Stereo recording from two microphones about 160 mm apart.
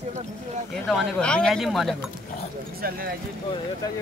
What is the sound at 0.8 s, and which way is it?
Speech, 5° left (ahead or behind).